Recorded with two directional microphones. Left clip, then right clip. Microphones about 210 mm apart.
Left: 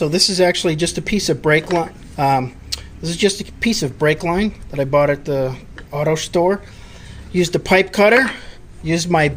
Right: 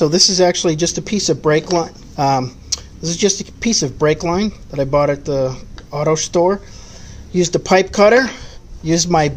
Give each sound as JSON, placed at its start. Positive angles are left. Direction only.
{"t": 0.0, "sound": "speech", "side_deg": -15}